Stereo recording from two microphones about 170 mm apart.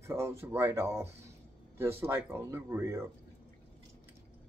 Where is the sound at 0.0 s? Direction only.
15° right (ahead or behind).